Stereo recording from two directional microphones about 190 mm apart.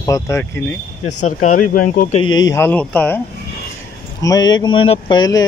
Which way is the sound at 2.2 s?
20° left (ahead or behind).